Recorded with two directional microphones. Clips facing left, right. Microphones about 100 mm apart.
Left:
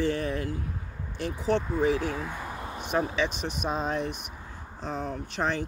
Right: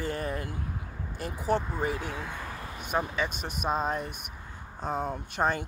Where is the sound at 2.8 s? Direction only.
5° right (ahead or behind).